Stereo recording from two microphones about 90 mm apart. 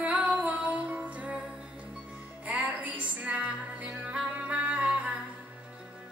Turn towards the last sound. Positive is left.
turn(degrees=-15)  # may be behind; listen again after turning